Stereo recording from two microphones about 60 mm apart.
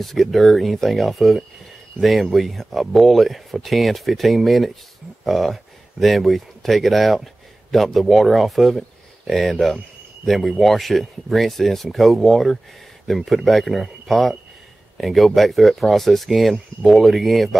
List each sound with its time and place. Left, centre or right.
0.0 s speech: centre